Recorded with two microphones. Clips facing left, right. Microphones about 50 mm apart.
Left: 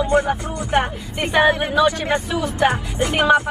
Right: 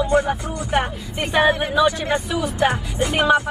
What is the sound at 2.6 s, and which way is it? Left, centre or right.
Speech, left.